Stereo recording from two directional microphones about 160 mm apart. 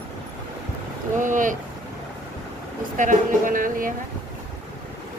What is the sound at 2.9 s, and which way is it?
Speech, 55° right (ahead or behind).